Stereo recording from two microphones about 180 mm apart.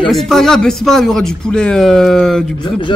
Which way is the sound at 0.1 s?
Centre (ahead or behind).